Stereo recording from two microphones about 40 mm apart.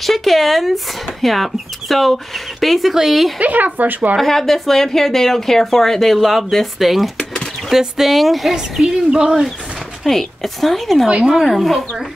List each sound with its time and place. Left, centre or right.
0.0 s a woman's voice: centre
3.3 s speech: right
4.2 s a woman's voice: centre
8.8 s a woman's voice: right
10.0 s a woman's voice: centre
11.1 s a woman's voice: right
11.3 s a woman's voice: centre